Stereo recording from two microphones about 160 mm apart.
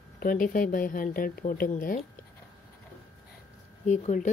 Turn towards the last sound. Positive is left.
turn(degrees=50)  # may be behind; listen again after turning